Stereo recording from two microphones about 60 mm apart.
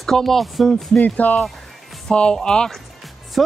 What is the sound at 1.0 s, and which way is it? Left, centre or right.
Speech, left.